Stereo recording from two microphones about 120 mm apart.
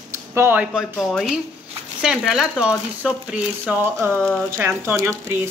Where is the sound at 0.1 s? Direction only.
20° right (ahead or behind).